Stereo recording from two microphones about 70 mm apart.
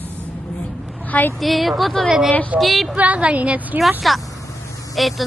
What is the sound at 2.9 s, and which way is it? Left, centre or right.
Speech, centre.